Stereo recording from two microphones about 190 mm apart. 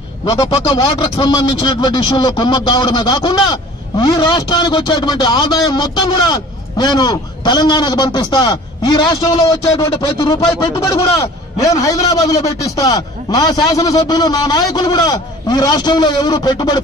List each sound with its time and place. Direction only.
0.2 s a man's voice: 30° left (ahead or behind)